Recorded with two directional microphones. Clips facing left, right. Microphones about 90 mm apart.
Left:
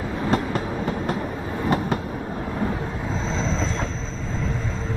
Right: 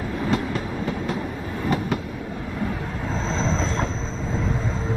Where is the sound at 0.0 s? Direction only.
15° left (ahead or behind).